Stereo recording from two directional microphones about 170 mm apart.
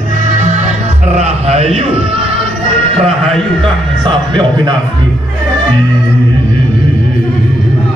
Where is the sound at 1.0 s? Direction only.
40° right (ahead or behind).